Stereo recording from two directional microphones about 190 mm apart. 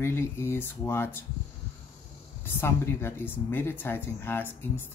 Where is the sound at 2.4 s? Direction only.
10° left (ahead or behind).